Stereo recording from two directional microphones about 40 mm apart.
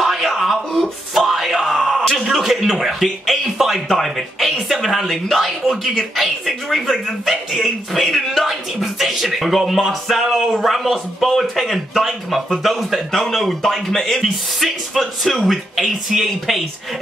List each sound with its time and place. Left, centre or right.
0.0 s music: centre
1.7 s a sound: centre
4.0 s speech: centre